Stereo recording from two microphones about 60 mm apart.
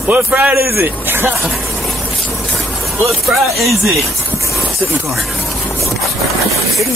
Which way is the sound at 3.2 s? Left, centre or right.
Centre.